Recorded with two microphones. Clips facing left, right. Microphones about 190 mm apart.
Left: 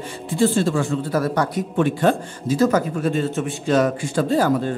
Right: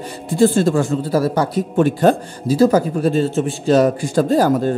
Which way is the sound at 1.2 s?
30° right (ahead or behind).